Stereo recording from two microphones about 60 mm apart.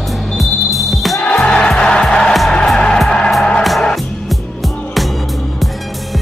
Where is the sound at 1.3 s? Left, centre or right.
Centre.